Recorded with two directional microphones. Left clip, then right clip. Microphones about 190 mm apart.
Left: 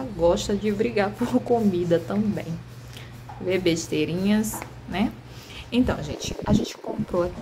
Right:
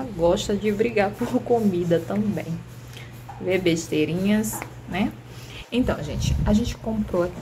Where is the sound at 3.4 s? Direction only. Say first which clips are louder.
Right 1 dB; 5° left (ahead or behind).